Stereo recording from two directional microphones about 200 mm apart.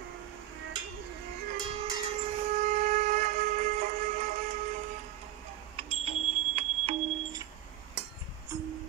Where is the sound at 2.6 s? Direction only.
40° right (ahead or behind).